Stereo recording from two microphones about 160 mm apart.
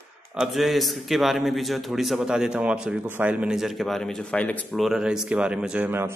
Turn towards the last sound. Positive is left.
turn(degrees=-15)  # may be behind; listen again after turning